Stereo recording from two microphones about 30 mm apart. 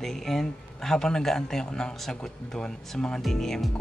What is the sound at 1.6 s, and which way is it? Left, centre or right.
Speech, left.